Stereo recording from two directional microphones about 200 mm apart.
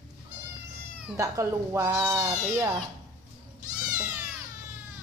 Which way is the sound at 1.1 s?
15° right (ahead or behind).